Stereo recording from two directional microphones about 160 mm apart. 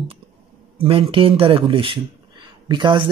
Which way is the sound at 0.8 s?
35° right (ahead or behind).